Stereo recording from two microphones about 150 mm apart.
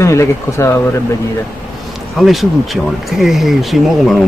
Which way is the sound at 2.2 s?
Centre (ahead or behind).